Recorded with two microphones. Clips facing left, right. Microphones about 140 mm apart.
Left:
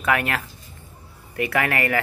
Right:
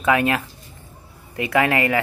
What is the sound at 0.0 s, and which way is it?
Speech, 20° right (ahead or behind).